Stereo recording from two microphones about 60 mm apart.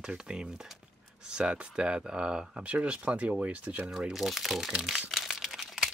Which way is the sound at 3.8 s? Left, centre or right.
Centre.